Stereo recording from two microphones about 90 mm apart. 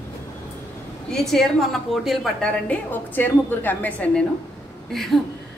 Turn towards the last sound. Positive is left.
turn(degrees=5)  # may be behind; listen again after turning